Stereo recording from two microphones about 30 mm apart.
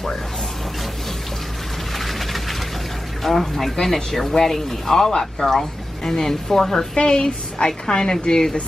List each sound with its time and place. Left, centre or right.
2.0 s a sound: centre
3.3 s speech: centre
7.0 s a woman's voice: left
8.1 s a woman's voice: left